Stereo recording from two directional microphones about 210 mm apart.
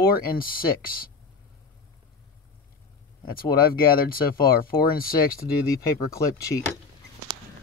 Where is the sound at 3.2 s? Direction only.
45° left (ahead or behind).